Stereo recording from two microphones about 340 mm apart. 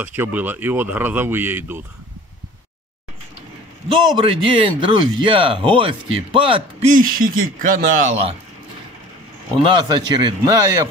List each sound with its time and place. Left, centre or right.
0.0 s speech: centre
3.9 s speech: centre
9.6 s speech: centre